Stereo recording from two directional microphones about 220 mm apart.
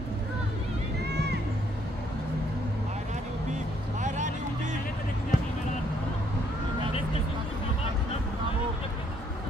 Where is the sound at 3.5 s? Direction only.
35° right (ahead or behind).